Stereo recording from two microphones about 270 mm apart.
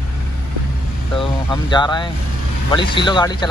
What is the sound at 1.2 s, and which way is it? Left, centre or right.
Speech, centre.